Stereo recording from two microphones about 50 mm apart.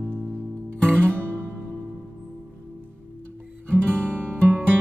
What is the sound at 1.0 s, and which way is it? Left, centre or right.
Music, right.